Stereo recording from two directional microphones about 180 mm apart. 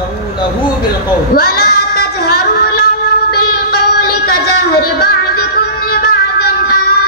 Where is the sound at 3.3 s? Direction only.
60° left (ahead or behind).